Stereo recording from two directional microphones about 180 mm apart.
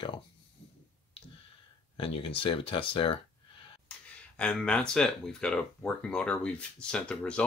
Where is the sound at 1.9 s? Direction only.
30° left (ahead or behind).